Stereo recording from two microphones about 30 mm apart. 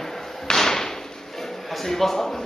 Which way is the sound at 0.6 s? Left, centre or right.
Centre.